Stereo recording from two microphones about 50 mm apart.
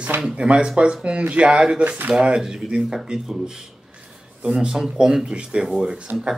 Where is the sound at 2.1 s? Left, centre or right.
Centre.